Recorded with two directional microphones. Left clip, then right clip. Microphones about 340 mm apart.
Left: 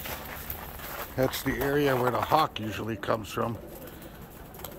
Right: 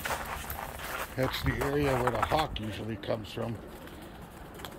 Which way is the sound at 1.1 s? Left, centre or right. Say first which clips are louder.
Left 5 dB; centre.